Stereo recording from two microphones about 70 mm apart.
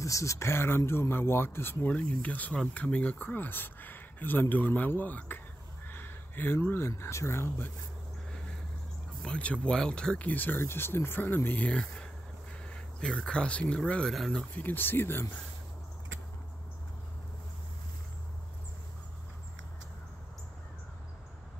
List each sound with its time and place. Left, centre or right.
0.0 s speech: left
1.9 s speech: left
9.2 s speech: centre
14.5 s speech: left